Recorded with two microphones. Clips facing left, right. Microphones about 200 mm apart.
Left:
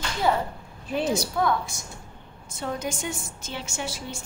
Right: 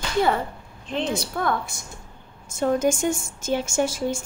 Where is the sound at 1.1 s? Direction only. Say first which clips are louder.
Left 2 dB; 55° right (ahead or behind).